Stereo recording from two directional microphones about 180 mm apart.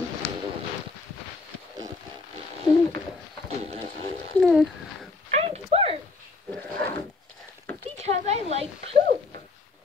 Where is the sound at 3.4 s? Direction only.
35° right (ahead or behind).